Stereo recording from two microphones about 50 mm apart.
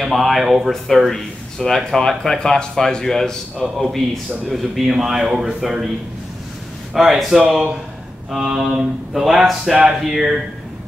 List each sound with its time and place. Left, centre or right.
0.0 s a man's voice: centre
4.5 s speech: centre
6.9 s speech: centre
8.6 s speech: centre